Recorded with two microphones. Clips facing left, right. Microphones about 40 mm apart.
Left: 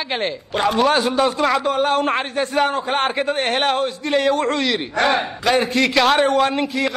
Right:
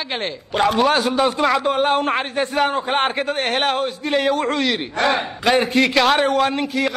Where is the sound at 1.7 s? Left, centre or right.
Right.